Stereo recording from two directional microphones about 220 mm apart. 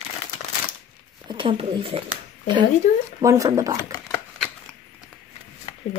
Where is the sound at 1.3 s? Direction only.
25° right (ahead or behind).